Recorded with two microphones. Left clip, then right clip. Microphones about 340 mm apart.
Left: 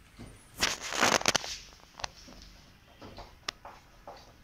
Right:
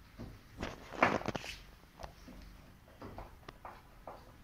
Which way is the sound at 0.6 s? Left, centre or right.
Left.